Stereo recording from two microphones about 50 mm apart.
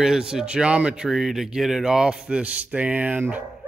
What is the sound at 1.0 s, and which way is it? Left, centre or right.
Speech, centre.